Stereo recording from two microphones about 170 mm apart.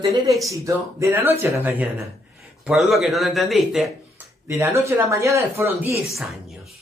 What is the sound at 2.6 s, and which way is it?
Speech, 5° right (ahead or behind).